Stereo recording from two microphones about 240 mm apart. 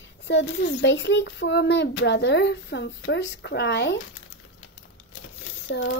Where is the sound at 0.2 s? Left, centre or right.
Left.